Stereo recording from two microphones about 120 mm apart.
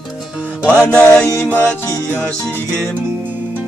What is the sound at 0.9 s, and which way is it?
Music, 10° left (ahead or behind).